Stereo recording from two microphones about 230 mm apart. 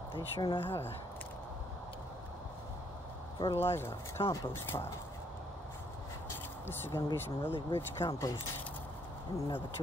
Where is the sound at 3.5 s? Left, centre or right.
Centre.